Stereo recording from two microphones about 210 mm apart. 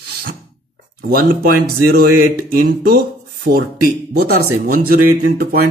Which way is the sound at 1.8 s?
45° right (ahead or behind).